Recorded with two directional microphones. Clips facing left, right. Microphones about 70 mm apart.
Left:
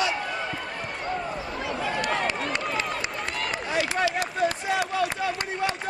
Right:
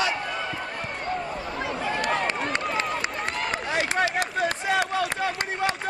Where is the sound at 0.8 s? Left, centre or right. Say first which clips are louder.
Even; centre.